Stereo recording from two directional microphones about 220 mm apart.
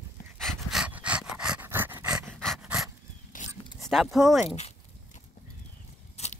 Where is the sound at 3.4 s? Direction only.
35° left (ahead or behind).